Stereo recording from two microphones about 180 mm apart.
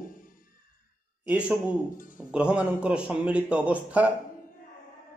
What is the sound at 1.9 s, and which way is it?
Speech, 50° left (ahead or behind).